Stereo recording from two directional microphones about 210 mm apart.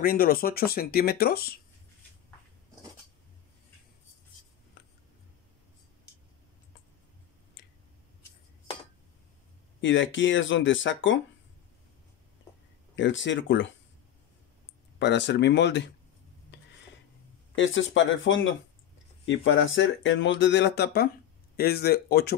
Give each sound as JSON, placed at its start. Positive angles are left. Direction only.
{"t": 0.0, "sound": "speech", "side_deg": 45}
{"t": 4.8, "sound": "a sound", "side_deg": 50}
{"t": 7.6, "sound": "chewing", "side_deg": 50}
{"t": 9.8, "sound": "speech", "side_deg": 65}
{"t": 12.9, "sound": "speech", "side_deg": 60}
{"t": 15.0, "sound": "speech", "side_deg": 55}
{"t": 17.6, "sound": "speech", "side_deg": 65}